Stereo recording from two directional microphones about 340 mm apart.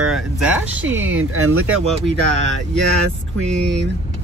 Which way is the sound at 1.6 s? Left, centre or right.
Centre.